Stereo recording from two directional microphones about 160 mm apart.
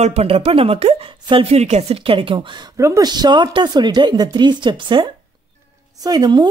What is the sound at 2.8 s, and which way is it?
A woman's voice, 20° right (ahead or behind).